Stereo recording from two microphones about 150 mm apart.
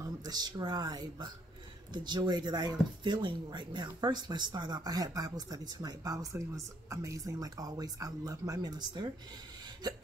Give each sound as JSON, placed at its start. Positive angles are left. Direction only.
{"t": 0.0, "sound": "speech", "side_deg": -25}